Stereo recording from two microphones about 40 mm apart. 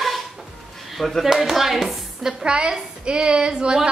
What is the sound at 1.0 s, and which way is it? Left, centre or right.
Speech, centre.